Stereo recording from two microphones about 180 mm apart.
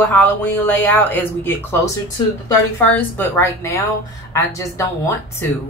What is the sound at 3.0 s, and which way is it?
Speech, 15° left (ahead or behind).